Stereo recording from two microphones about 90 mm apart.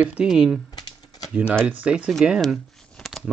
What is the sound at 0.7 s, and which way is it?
Typing, 50° left (ahead or behind).